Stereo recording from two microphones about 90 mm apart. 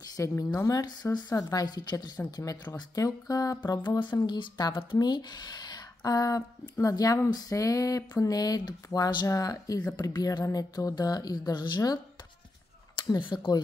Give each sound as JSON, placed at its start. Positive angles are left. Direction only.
{"t": 0.1, "sound": "a woman's voice", "side_deg": 35}
{"t": 4.0, "sound": "speech", "side_deg": 60}
{"t": 12.9, "sound": "a sound", "side_deg": 55}